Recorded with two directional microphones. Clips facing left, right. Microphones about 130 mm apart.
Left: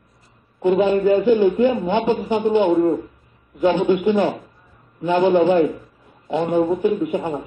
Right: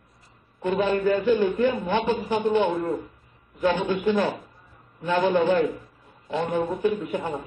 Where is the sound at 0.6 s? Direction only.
25° left (ahead or behind).